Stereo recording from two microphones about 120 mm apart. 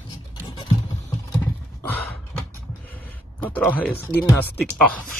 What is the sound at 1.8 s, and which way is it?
Sigh, 15° left (ahead or behind).